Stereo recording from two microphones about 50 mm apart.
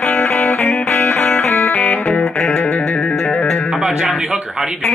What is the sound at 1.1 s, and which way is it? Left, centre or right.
Music, left.